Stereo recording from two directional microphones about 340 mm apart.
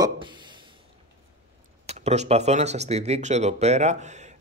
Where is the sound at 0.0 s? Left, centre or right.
Centre.